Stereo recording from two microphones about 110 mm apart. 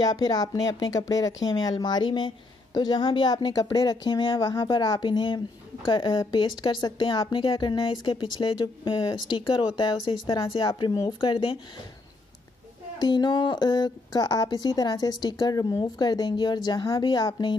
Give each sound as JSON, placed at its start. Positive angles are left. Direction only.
{"t": 0.0, "sound": "a woman's voice", "side_deg": 35}
{"t": 13.0, "sound": "a woman's voice", "side_deg": 40}